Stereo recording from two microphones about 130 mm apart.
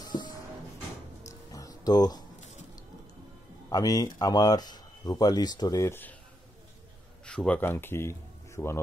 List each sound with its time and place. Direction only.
0.0 s a sound: 35° left (ahead or behind)
1.2 s music: 25° left (ahead or behind)
3.7 s speech: 30° left (ahead or behind)
7.2 s speech: 10° left (ahead or behind)